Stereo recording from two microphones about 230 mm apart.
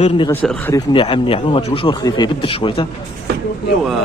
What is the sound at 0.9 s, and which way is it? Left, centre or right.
Speech, left.